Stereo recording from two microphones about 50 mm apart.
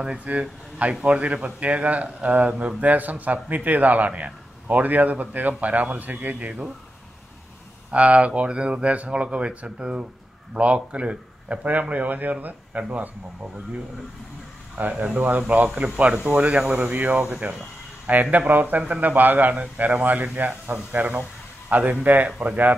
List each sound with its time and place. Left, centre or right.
0.2 s a man's voice: right
7.9 s speech: right
11.9 s a man's voice: right
14.8 s a man's voice: right
16.9 s a man's voice: right